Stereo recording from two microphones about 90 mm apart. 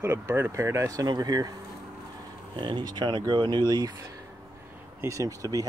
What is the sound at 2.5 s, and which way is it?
Speech, 60° right (ahead or behind).